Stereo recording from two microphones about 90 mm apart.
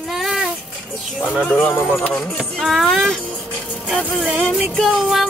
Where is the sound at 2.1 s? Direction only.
Centre (ahead or behind).